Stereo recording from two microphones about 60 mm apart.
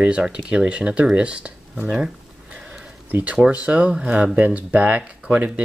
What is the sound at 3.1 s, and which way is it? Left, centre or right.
Speech, right.